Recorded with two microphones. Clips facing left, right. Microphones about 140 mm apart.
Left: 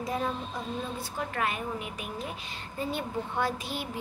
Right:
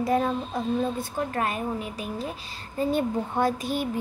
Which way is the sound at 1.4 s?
40° right (ahead or behind).